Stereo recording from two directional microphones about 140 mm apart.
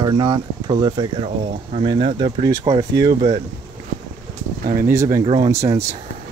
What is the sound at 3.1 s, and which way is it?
Speech, 55° right (ahead or behind).